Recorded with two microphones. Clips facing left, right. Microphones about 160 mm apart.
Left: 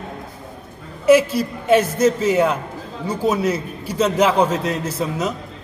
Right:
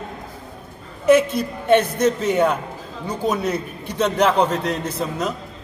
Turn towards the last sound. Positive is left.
turn(degrees=5)  # may be behind; listen again after turning